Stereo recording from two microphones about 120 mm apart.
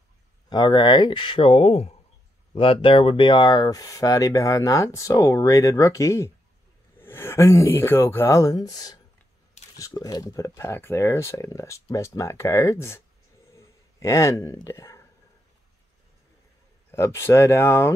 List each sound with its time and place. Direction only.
0.5 s speech: 35° left (ahead or behind); by 13.0 s 20° left (ahead or behind)
13.5 s a sound: 25° left (ahead or behind)
16.9 s speech: 20° left (ahead or behind)